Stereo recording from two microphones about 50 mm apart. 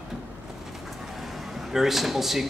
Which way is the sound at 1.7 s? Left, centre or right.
Centre.